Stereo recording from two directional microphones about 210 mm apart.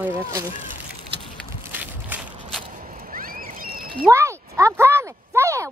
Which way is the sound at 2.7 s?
40° right (ahead or behind).